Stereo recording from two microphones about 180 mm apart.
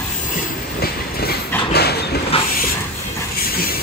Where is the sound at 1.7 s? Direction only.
65° left (ahead or behind).